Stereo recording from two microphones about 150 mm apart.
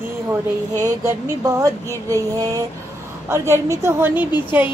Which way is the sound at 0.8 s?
20° right (ahead or behind).